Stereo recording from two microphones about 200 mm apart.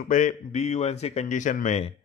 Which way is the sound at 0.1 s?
40° left (ahead or behind).